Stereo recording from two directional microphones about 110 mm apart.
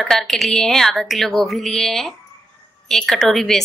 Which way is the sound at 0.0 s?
5° left (ahead or behind).